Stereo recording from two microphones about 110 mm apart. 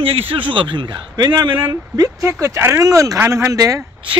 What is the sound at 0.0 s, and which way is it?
A man's voice, 60° right (ahead or behind).